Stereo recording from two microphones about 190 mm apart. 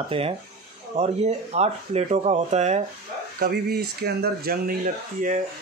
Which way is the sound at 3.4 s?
55° right (ahead or behind).